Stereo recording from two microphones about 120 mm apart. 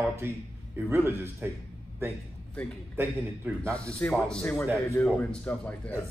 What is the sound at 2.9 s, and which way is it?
Speech, 20° right (ahead or behind).